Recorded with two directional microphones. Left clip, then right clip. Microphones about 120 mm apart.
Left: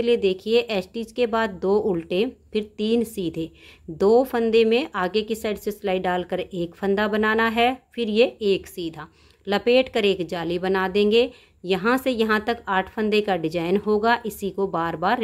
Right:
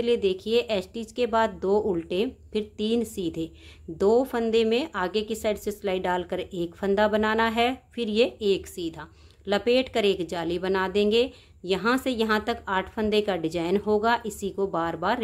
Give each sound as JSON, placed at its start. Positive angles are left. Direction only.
{"t": 0.0, "sound": "a woman's voice", "side_deg": 25}